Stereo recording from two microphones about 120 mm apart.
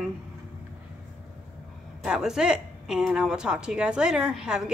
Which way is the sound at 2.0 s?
5° right (ahead or behind).